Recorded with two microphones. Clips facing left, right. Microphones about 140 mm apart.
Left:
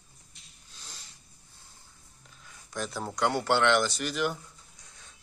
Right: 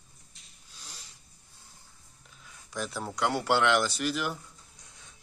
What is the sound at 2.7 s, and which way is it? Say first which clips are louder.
Speech: even; 5° right (ahead or behind).